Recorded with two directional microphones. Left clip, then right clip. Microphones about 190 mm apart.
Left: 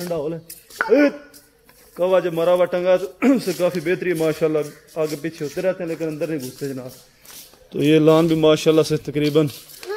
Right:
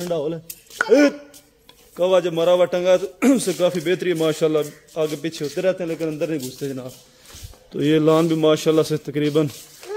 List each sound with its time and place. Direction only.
0.0 s a man's voice: 10° right (ahead or behind); by 9.5 s 5° left (ahead or behind)